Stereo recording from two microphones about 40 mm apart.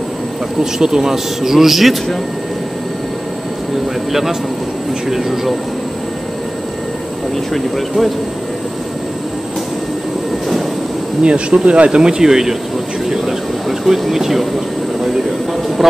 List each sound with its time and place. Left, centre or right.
0.7 s speech: centre
4.1 s speech: centre
7.5 s speech: centre
11.2 s speech: right; by 14.5 s centre